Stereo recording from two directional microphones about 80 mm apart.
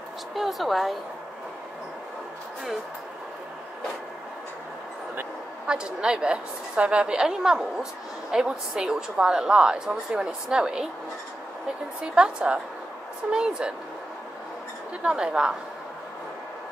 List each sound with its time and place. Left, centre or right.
0.3 s speech: centre
5.7 s a woman's voice: centre
12.0 s a woman's voice: centre
15.0 s a woman's voice: centre